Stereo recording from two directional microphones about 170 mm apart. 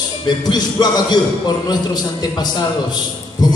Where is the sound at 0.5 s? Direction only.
25° left (ahead or behind).